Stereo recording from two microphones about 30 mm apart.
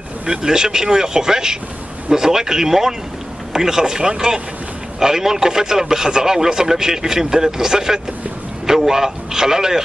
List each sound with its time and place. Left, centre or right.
0.3 s a man's voice: right